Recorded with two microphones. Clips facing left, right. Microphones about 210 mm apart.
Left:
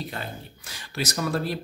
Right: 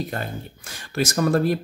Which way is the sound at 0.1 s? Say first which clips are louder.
Right 5 dB; 50° right (ahead or behind).